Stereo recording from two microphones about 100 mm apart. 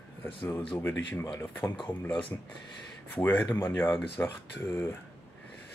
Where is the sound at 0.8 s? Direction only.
20° left (ahead or behind).